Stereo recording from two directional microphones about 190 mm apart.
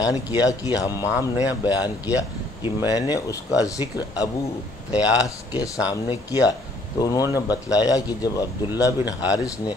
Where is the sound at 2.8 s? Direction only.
20° left (ahead or behind).